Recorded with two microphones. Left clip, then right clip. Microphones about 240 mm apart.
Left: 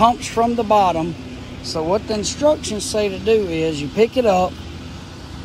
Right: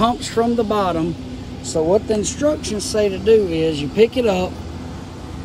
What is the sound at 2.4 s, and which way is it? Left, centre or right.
Speech, left.